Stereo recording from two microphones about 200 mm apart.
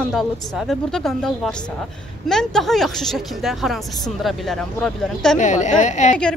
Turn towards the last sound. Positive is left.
turn(degrees=35)  # may be behind; listen again after turning